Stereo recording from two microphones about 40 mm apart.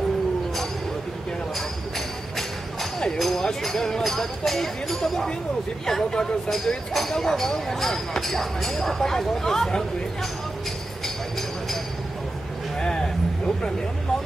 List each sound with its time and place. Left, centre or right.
2.0 s music: centre
3.4 s speech: centre
12.7 s a sound: centre